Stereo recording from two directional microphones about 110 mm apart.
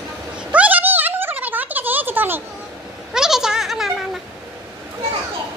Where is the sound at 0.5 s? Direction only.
15° right (ahead or behind).